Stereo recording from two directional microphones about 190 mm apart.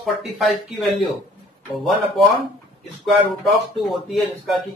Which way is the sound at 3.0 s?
Centre (ahead or behind).